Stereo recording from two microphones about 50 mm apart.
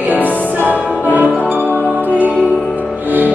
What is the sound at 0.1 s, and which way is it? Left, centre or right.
Music, left.